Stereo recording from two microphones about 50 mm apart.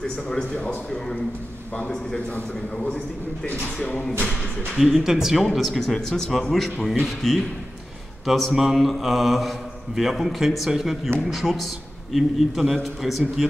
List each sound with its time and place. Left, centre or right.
0.0 s a man's voice: centre
2.1 s a man's voice: left
4.3 s speech: centre